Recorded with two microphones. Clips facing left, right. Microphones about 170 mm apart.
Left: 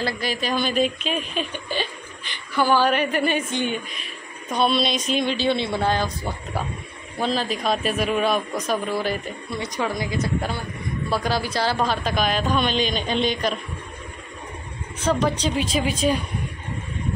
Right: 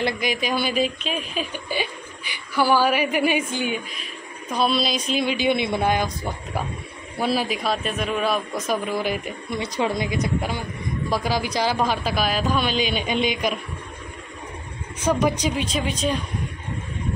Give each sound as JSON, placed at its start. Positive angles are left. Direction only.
{"t": 0.0, "sound": "a woman's voice", "side_deg": -15}
{"t": 9.6, "sound": "a woman's voice", "side_deg": -25}
{"t": 15.0, "sound": "a woman's voice", "side_deg": -10}
{"t": 15.5, "sound": "speech", "side_deg": 5}